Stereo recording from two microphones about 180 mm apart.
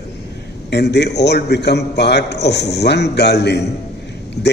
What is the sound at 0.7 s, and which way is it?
A man's voice, 70° left (ahead or behind).